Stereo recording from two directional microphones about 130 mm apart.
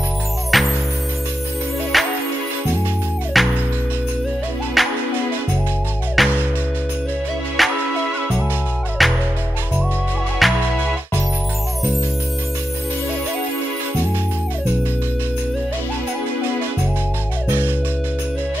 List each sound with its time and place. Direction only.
0.5 s music: centre (ahead or behind)
1.9 s music: centre (ahead or behind)
3.3 s music: centre (ahead or behind)
4.8 s music: centre (ahead or behind)
6.2 s music: centre (ahead or behind)
7.6 s music: centre (ahead or behind)
9.0 s music: centre (ahead or behind)
10.4 s music: centre (ahead or behind)
17.5 s music: 20° right (ahead or behind)